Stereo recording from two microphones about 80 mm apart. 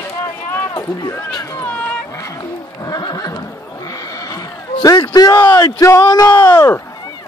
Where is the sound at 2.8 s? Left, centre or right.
Left.